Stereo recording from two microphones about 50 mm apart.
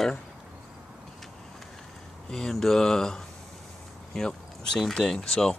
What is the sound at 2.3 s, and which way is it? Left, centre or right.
Speech, centre.